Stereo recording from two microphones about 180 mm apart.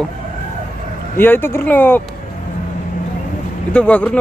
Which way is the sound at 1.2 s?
10° left (ahead or behind).